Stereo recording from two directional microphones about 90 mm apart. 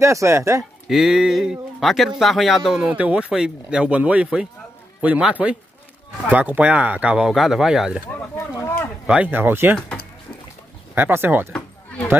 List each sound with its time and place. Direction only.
0.0 s speech: 35° right (ahead or behind)
0.8 s a man's voice: 5° right (ahead or behind)
9.0 s speech: 15° right (ahead or behind)
11.0 s speech: 25° right (ahead or behind)